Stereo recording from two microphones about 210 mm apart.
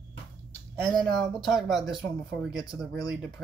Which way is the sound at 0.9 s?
Centre (ahead or behind).